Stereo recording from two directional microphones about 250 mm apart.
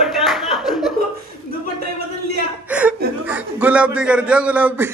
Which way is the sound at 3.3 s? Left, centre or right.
Centre.